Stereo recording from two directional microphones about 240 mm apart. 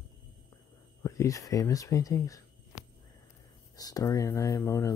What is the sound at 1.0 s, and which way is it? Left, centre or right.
Speech, centre.